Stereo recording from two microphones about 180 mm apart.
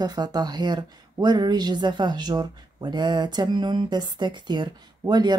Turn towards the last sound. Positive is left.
turn(degrees=-25)  # may be behind; listen again after turning